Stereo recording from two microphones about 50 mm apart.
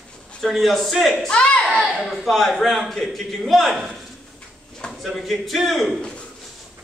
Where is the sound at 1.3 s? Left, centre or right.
Left.